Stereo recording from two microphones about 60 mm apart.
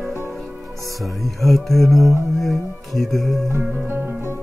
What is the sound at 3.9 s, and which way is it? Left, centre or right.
Music, right.